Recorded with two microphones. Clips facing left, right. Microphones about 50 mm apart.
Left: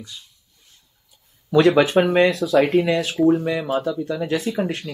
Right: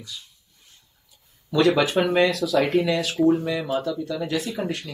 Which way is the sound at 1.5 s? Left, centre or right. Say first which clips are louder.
Left 4 dB; left.